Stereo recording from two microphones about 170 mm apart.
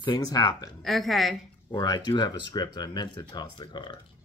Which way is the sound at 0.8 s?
Centre (ahead or behind).